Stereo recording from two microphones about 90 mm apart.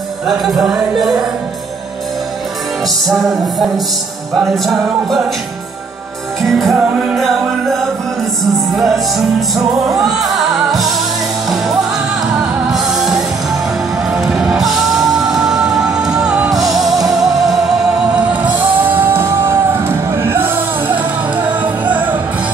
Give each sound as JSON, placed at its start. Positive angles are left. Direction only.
{"t": 0.3, "sound": "music", "side_deg": -5}
{"t": 3.1, "sound": "music", "side_deg": 0}
{"t": 6.4, "sound": "music", "side_deg": 0}
{"t": 6.8, "sound": "music", "side_deg": -10}
{"t": 7.2, "sound": "music", "side_deg": 0}
{"t": 12.4, "sound": "music", "side_deg": -10}
{"t": 18.8, "sound": "music", "side_deg": -25}